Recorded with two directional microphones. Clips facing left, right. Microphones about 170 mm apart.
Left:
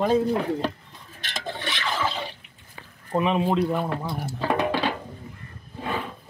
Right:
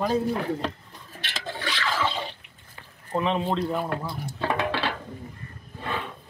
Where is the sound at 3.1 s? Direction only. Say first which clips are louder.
Left 3 dB; 10° left (ahead or behind).